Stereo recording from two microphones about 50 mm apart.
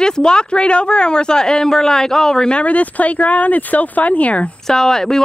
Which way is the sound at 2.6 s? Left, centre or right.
Left.